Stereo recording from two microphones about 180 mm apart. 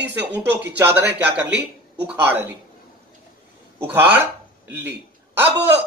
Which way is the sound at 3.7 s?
10° right (ahead or behind).